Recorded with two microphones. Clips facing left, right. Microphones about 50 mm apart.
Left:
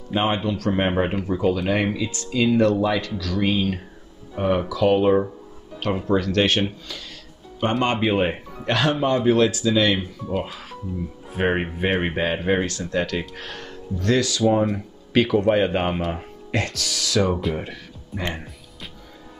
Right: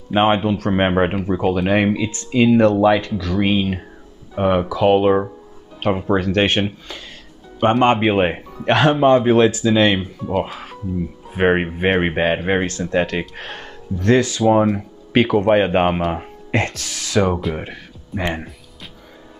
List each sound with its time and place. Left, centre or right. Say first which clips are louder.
0.1 s speech: right 6 dB; right
6.9 s music: right 2 dB; right
7.8 s speech: right 4 dB; right
11.3 s speech: right 6 dB; right